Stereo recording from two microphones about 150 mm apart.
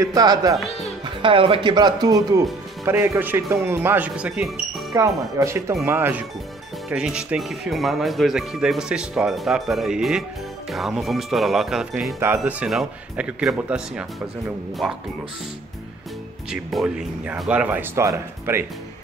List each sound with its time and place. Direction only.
0.0 s speech: 25° right (ahead or behind)
1.2 s speech: 35° right (ahead or behind); by 4.8 s 5° right (ahead or behind)
4.9 s speech: 20° right (ahead or behind)
16.4 s speech: 5° right (ahead or behind)